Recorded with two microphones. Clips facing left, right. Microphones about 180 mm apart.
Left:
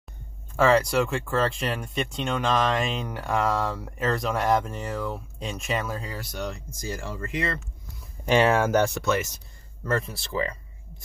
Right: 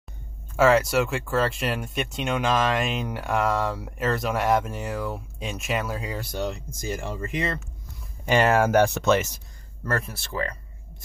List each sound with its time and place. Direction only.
0.6 s speech: 5° right (ahead or behind)
6.0 s speech: 25° right (ahead or behind)
8.3 s speech: 5° right (ahead or behind)
9.8 s speech: centre (ahead or behind)